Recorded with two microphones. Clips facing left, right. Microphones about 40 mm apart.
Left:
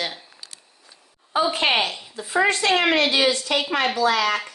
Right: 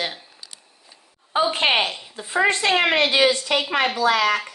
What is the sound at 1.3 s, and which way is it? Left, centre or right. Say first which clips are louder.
A woman's voice: right 1 dB; right.